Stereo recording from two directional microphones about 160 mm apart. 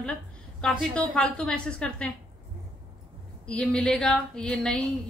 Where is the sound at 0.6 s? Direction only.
5° left (ahead or behind).